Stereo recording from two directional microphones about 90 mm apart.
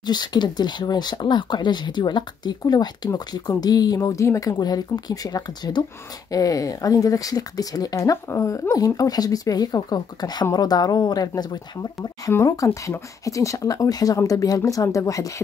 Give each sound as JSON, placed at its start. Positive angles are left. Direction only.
{"t": 0.0, "sound": "speech", "side_deg": 50}
{"t": 6.3, "sound": "speech", "side_deg": 40}
{"t": 12.4, "sound": "speech", "side_deg": 40}